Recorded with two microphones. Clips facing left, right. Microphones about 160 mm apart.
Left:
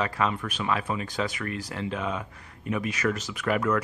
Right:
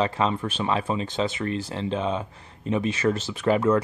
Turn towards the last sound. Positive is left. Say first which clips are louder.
# right 5 dB
turn(degrees=-25)  # may be behind; listen again after turning